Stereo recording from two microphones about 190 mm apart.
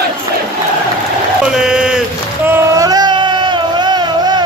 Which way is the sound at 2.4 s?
15° right (ahead or behind).